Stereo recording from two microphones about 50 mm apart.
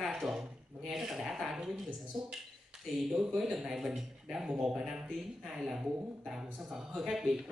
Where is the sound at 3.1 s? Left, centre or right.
Centre.